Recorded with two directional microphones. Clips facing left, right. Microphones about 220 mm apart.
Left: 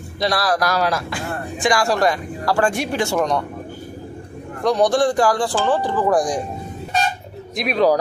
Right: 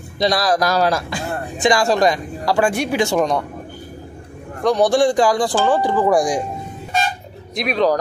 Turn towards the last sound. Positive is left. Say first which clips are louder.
# left 1 dB
turn(degrees=5)  # may be behind; listen again after turning